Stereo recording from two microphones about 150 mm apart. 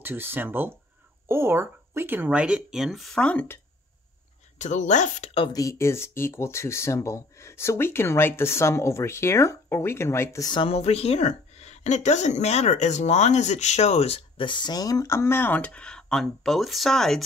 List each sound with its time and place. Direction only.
0.0 s speech: 15° right (ahead or behind); by 3.5 s 10° left (ahead or behind)
4.6 s a woman's voice: 55° left (ahead or behind)
5.5 s speech: 20° left (ahead or behind)
10.5 s a woman's voice: 40° left (ahead or behind); by 17.2 s centre (ahead or behind)